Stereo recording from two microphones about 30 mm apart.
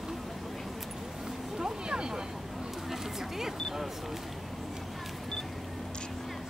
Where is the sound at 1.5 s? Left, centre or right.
Right.